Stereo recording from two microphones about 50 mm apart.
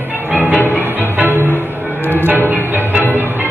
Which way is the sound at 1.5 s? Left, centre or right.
Left.